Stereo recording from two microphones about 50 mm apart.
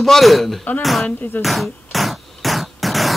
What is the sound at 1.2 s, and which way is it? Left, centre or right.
Speech, left.